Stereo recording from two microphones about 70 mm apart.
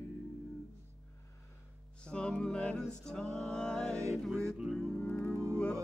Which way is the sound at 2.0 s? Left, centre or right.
Centre.